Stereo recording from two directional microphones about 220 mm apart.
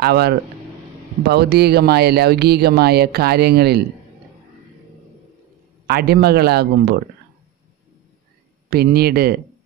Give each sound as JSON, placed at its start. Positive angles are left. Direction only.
{"t": 0.0, "sound": "speech", "side_deg": -45}
{"t": 5.9, "sound": "speech", "side_deg": -45}
{"t": 8.6, "sound": "speech", "side_deg": -45}